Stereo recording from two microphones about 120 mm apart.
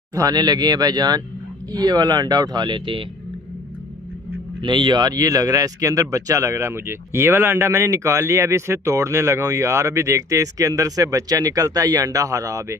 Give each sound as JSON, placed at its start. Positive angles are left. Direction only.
{"t": 0.1, "sound": "speech", "side_deg": -35}
{"t": 4.6, "sound": "speech", "side_deg": -40}